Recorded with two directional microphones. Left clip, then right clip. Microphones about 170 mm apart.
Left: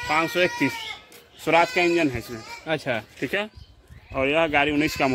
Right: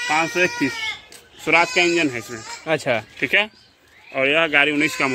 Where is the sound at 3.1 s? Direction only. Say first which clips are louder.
Right 8 dB; 30° left (ahead or behind).